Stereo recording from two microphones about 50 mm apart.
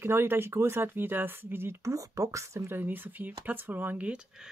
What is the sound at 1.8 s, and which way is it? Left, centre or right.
Speech, right.